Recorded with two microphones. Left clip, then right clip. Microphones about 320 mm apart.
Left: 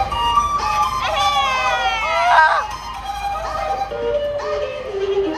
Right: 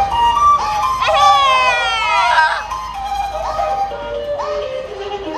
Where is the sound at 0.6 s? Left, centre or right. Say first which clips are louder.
Right 2 dB; right.